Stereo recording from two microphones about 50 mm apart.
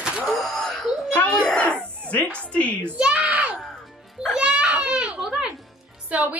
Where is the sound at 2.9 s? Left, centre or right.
Right.